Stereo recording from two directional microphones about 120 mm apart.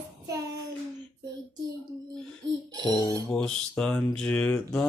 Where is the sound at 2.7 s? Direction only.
35° right (ahead or behind).